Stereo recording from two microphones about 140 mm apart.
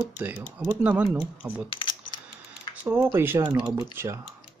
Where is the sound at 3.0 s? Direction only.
15° right (ahead or behind).